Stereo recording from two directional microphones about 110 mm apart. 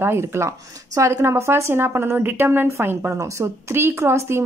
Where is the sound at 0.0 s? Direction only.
25° right (ahead or behind).